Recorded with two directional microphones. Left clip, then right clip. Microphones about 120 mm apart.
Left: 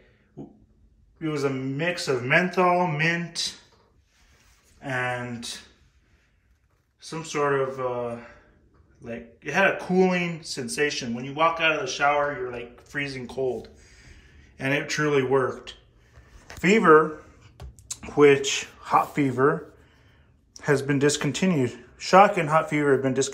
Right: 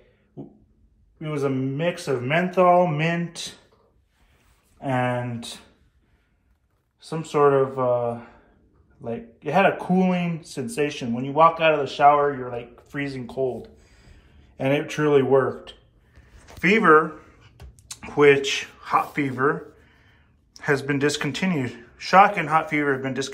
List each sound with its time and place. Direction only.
1.3 s speech: 20° right (ahead or behind)
2.2 s speech: 5° right (ahead or behind)
4.8 s a man's voice: 25° right (ahead or behind)
7.0 s a man's voice: 30° right (ahead or behind)
9.0 s a man's voice: 30° right (ahead or behind)
9.9 s speech: 10° right (ahead or behind)
11.2 s a man's voice: 30° right (ahead or behind)
12.7 s speech: 10° right (ahead or behind)
16.6 s speech: 25° left (ahead or behind); by 23.3 s 40° left (ahead or behind)